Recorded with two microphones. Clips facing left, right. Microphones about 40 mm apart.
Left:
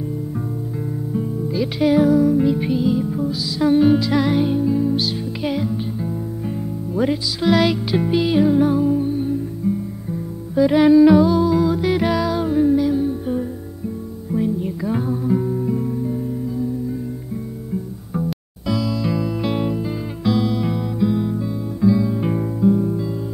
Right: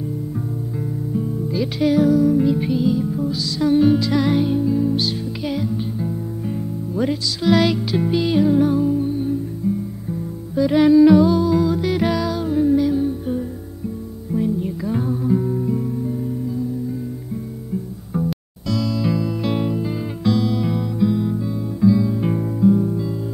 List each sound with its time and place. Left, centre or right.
1.1 s music: centre
9.6 s music: left
10.5 s music: centre
18.7 s music: centre